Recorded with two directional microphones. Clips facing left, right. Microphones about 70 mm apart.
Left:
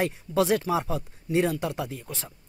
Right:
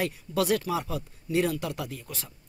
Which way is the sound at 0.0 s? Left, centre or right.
Left.